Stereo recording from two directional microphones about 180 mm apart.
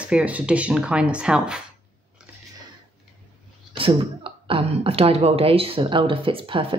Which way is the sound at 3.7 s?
30° right (ahead or behind).